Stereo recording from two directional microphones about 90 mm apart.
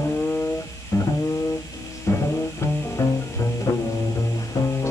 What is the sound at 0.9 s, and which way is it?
Guitar, 35° left (ahead or behind).